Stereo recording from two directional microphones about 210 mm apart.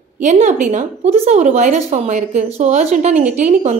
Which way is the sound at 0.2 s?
35° right (ahead or behind).